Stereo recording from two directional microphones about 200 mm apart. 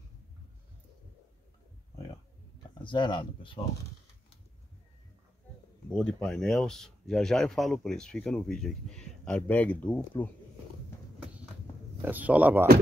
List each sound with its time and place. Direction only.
2.8 s speech: 25° left (ahead or behind)
5.9 s speech: 5° left (ahead or behind)
12.0 s speech: 10° right (ahead or behind)